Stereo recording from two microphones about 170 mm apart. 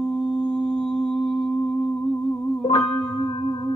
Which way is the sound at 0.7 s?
5° left (ahead or behind).